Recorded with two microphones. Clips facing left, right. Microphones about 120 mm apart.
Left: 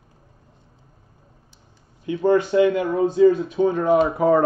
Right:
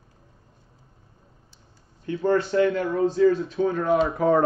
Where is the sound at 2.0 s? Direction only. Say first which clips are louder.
Left 4 dB; 15° left (ahead or behind).